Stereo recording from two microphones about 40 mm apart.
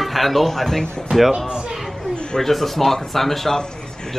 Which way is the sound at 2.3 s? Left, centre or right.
Centre.